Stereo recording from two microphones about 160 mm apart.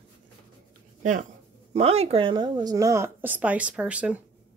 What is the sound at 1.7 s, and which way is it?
Speech, 40° right (ahead or behind).